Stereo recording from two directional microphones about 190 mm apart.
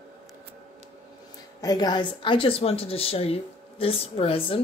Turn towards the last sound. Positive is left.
turn(degrees=30)  # may be behind; listen again after turning